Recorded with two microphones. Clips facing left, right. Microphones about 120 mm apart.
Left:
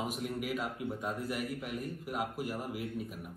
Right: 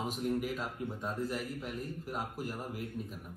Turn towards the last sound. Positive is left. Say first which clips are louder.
# left 2 dB
turn(degrees=10)  # may be behind; listen again after turning